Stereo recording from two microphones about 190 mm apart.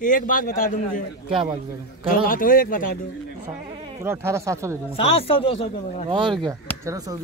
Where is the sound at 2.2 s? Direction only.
50° left (ahead or behind).